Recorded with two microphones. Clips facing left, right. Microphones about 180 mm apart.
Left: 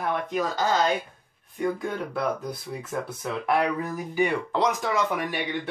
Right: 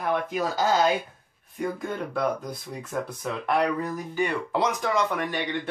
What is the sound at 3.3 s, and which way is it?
Speech, 5° left (ahead or behind).